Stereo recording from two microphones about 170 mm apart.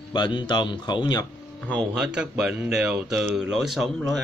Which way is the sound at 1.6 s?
Centre (ahead or behind).